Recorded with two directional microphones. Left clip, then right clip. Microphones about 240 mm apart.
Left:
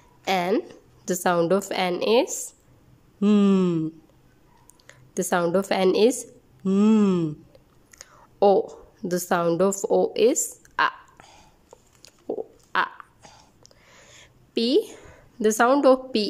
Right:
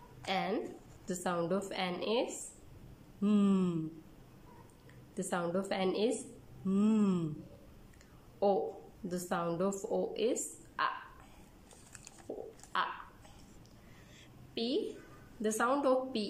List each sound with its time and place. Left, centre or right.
0.2 s a woman's voice: left
5.1 s a woman's voice: left
9.1 s a woman's voice: left
12.7 s a sound: left
15.4 s a woman's voice: left